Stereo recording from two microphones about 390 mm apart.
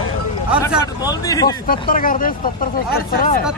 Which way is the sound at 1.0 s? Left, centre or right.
Centre.